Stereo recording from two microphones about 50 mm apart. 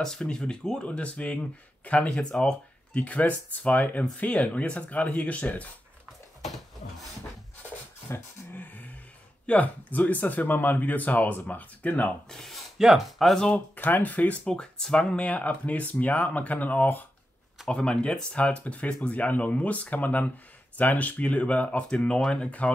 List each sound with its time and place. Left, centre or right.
0.0 s speech: centre; by 2.0 s left
2.0 s speech: centre
2.9 s speech: left
6.4 s a sound: centre
8.1 s speech: left
12.3 s speech: centre
13.7 s speech: left
14.5 s speech: centre
15.2 s speech: left
17.6 s speech: centre
21.9 s speech: centre